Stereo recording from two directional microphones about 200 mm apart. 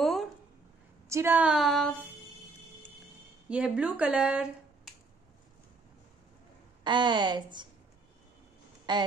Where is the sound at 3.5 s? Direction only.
5° right (ahead or behind).